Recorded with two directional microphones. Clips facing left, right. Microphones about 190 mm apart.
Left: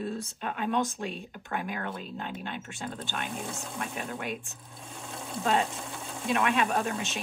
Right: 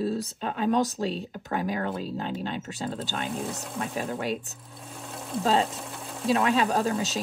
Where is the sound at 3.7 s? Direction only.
35° right (ahead or behind).